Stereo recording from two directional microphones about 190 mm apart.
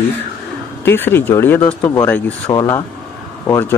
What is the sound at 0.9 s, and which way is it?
Speech, 10° left (ahead or behind).